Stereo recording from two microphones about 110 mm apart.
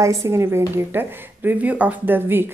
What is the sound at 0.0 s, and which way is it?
Speech, 30° right (ahead or behind).